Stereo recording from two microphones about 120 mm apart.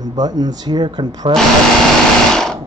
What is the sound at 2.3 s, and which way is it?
Sewing machine, 5° left (ahead or behind).